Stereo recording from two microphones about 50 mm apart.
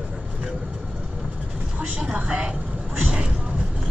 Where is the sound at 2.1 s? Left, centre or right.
Right.